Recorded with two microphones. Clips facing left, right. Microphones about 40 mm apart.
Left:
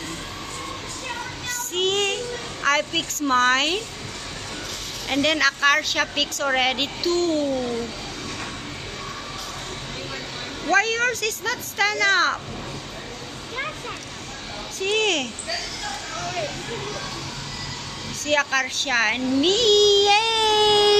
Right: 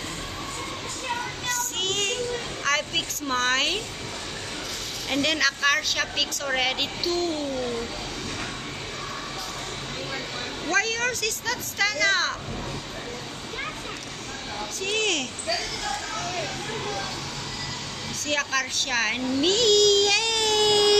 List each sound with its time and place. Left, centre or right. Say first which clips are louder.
1.5 s child singing: left 5 dB; centre
2.6 s a woman's voice: left 5 dB; centre
5.1 s a woman's voice: left 4 dB; centre
7.2 s a child's voice: left 7 dB; centre
10.7 s a woman's voice: left 5 dB; centre
14.8 s a woman's voice: left 4 dB; centre
16.7 s a child's voice: even; centre
18.2 s a child's voice: left 5 dB; centre